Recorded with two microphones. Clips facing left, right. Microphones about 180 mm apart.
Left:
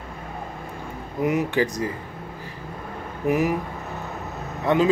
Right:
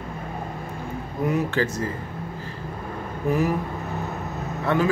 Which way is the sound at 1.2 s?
15° left (ahead or behind).